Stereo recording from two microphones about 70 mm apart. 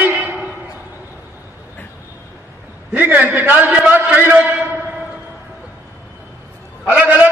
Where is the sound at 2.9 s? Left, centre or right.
Right.